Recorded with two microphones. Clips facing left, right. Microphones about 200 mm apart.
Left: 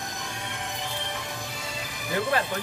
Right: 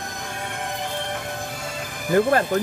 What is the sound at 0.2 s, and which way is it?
Music, 50° right (ahead or behind).